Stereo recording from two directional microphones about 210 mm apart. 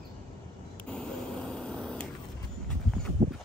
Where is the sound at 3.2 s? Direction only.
30° right (ahead or behind).